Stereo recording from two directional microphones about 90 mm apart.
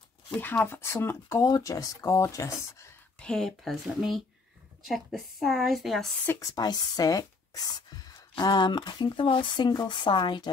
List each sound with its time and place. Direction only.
0.7 s speech: 30° left (ahead or behind)
3.2 s a woman's voice: 5° left (ahead or behind)
6.4 s speech: 50° left (ahead or behind)